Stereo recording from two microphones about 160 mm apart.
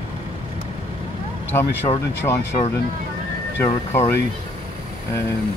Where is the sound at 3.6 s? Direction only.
15° left (ahead or behind).